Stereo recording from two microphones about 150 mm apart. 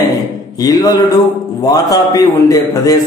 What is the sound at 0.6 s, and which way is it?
A man's voice, 25° left (ahead or behind).